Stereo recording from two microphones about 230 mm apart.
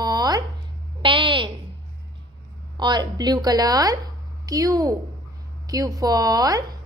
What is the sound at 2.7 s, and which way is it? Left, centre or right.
A child's voice, centre.